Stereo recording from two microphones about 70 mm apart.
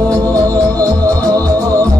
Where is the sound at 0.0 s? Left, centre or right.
Right.